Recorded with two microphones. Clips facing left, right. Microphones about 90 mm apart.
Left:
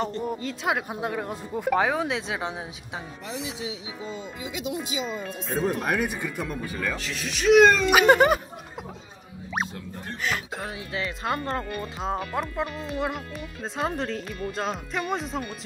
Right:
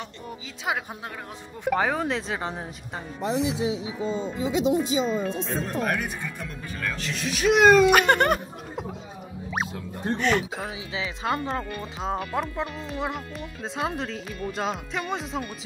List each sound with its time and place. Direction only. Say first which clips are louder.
0.2 s speech: left 6 dB; centre (ahead or behind)
4.4 s speech: right 10 dB; 30° right (ahead or behind)
5.5 s speech: left 6 dB; 10° left (ahead or behind)
10.1 s speech: right 6 dB; centre (ahead or behind)